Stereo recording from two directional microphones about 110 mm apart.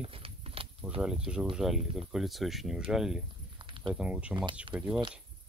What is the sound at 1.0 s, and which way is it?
Speech, 5° right (ahead or behind).